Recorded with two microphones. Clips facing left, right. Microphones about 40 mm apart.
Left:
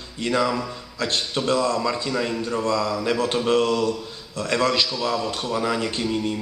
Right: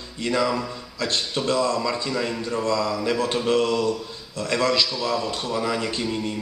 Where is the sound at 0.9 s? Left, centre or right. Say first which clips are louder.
Left 1 dB; left.